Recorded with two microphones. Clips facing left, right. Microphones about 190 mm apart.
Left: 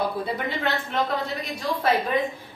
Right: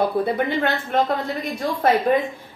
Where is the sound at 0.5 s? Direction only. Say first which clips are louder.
Right 5 dB; 50° right (ahead or behind).